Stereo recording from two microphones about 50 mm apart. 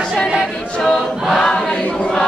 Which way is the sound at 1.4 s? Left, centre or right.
Centre.